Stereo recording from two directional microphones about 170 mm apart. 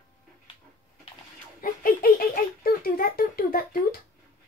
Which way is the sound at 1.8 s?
60° left (ahead or behind).